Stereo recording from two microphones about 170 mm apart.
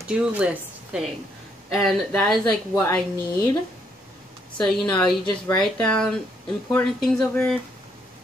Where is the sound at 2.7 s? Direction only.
20° left (ahead or behind).